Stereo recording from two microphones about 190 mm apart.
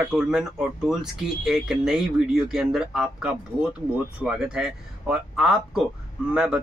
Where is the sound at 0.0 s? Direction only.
5° right (ahead or behind).